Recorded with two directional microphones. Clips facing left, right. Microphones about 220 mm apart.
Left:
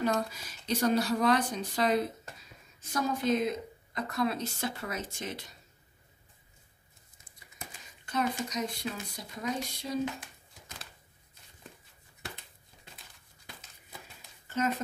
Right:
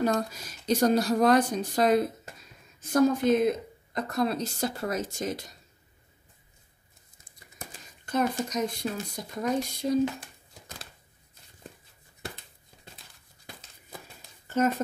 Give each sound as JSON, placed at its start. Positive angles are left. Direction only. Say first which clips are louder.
{"t": 0.0, "sound": "a woman's voice", "louder": "right 3 dB", "side_deg": -45}
{"t": 8.0, "sound": "speech", "louder": "right 4 dB", "side_deg": -45}